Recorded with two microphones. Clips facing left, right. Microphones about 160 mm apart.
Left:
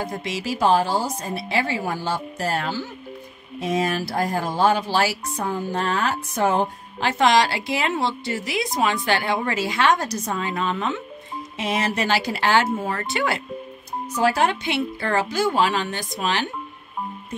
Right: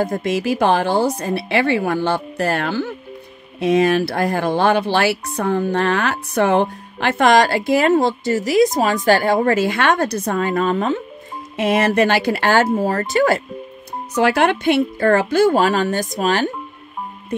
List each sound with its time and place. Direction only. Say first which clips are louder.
0.0 s speech: right 8 dB; 50° right (ahead or behind)
11.5 s speech: right 8 dB; 55° right (ahead or behind)
12.7 s speech: right 8 dB; 40° right (ahead or behind)
14.1 s a woman's voice: right 5 dB; 70° right (ahead or behind); by 16.4 s 45° right (ahead or behind)